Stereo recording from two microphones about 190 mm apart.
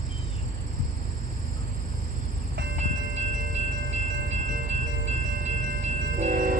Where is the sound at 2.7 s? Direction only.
40° right (ahead or behind).